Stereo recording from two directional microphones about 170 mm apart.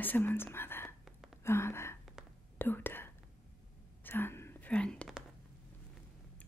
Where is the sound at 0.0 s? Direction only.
10° left (ahead or behind).